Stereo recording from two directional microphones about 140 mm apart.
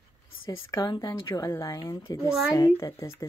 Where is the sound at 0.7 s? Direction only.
30° left (ahead or behind).